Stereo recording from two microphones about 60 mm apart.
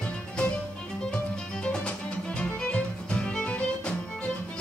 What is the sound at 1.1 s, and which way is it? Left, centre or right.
Music, centre.